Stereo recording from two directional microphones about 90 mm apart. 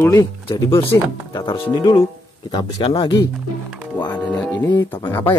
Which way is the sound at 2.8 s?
65° left (ahead or behind).